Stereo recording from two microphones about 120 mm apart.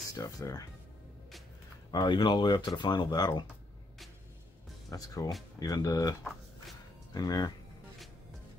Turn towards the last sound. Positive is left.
turn(degrees=35)  # may be behind; listen again after turning